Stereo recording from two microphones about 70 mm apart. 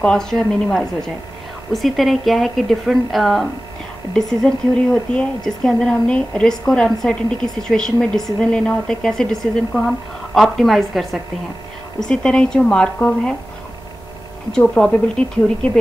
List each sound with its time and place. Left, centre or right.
0.0 s a woman's voice: centre
14.6 s speech: centre